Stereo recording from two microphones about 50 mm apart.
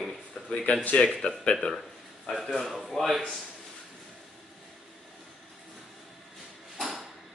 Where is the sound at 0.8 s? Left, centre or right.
Left.